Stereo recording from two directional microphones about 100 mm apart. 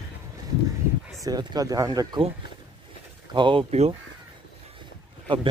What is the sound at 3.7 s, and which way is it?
Speech, 90° right.